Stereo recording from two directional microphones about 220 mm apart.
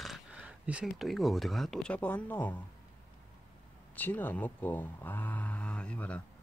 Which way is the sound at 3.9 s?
10° left (ahead or behind).